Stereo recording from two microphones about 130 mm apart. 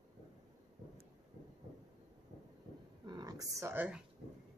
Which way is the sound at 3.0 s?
30° right (ahead or behind).